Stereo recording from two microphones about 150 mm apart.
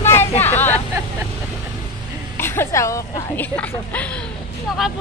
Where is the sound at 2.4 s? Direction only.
15° left (ahead or behind).